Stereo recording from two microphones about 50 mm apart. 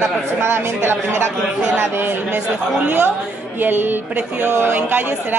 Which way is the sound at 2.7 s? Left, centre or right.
Right.